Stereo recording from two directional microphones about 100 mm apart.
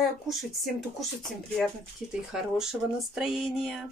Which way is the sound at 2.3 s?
5° right (ahead or behind).